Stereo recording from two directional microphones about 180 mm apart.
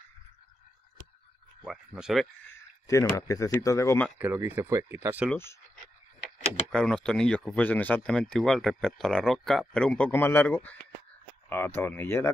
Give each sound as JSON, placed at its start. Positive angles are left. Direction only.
{"t": 1.9, "sound": "speech", "side_deg": -5}
{"t": 3.2, "sound": "speech", "side_deg": 20}
{"t": 4.2, "sound": "speech", "side_deg": -10}
{"t": 5.3, "sound": "speech", "side_deg": 15}
{"t": 6.7, "sound": "speech", "side_deg": 5}